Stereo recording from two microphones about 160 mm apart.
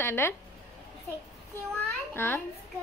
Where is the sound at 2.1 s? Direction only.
15° left (ahead or behind).